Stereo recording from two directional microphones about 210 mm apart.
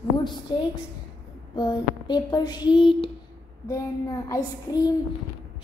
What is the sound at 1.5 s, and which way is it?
Speech, 20° left (ahead or behind).